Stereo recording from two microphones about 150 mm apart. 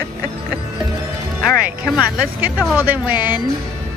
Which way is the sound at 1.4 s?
5° right (ahead or behind).